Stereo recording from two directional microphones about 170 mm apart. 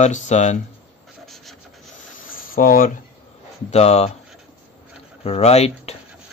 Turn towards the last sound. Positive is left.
turn(degrees=40)  # may be behind; listen again after turning